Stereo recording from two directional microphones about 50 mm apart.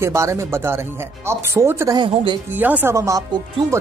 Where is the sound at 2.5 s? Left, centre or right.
Right.